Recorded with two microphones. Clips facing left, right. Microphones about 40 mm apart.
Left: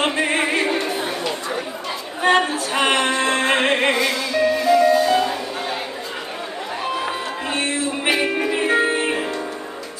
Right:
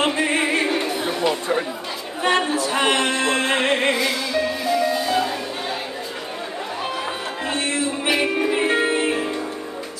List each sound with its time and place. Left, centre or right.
0.0 s music: centre
2.8 s music: left
4.0 s music: centre
6.8 s music: centre
7.5 s music: left
8.2 s music: centre